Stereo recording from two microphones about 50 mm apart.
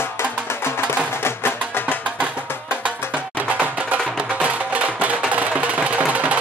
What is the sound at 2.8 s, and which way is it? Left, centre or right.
Music, right.